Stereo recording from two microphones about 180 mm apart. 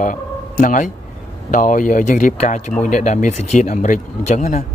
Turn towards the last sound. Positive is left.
turn(degrees=40)  # may be behind; listen again after turning